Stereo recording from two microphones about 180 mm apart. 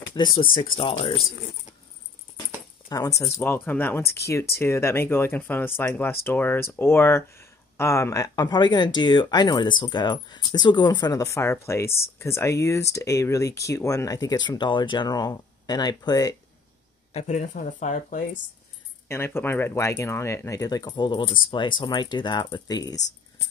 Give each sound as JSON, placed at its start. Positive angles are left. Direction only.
{"t": 0.1, "sound": "speech", "side_deg": 25}
{"t": 2.9, "sound": "speech", "side_deg": 20}
{"t": 17.1, "sound": "speech", "side_deg": 40}
{"t": 19.0, "sound": "speech", "side_deg": 15}